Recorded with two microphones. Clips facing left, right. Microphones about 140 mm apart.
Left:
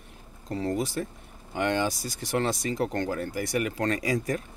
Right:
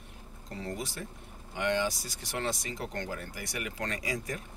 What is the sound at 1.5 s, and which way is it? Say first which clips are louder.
Speech: left 4 dB; 40° left (ahead or behind).